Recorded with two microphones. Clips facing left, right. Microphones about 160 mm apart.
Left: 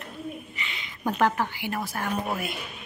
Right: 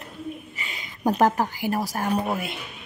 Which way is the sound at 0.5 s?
40° right (ahead or behind).